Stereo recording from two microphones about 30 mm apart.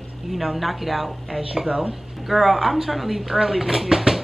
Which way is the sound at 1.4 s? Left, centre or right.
Right.